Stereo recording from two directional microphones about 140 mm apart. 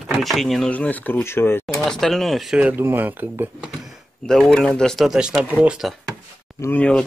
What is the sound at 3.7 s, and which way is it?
Speech, centre (ahead or behind).